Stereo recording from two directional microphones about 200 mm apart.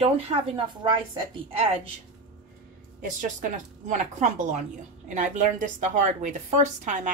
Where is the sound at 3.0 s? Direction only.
40° right (ahead or behind).